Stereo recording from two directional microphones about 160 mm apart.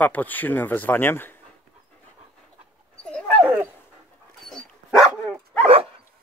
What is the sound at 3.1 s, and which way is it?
Dog, 5° left (ahead or behind).